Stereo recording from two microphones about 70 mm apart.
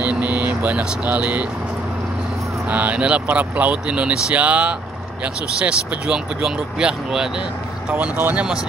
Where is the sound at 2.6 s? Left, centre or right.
Centre.